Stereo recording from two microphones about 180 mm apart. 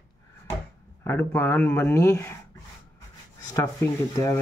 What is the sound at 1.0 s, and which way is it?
Speech, 10° left (ahead or behind).